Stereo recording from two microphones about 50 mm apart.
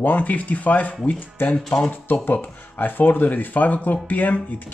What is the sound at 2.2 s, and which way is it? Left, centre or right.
Speech, left.